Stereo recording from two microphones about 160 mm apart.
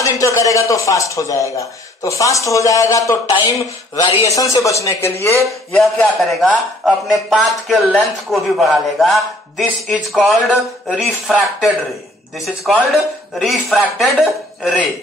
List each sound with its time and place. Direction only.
0.0 s speech: 20° left (ahead or behind)
5.7 s a man's voice: 5° left (ahead or behind)